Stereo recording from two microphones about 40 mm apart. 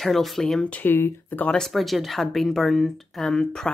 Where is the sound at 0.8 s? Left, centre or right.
Left.